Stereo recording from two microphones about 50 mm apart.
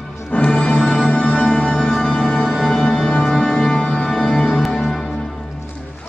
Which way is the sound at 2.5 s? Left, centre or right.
Centre.